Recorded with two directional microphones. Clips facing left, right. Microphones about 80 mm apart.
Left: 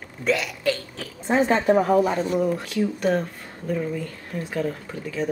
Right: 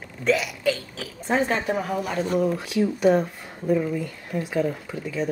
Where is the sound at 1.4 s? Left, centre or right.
Left.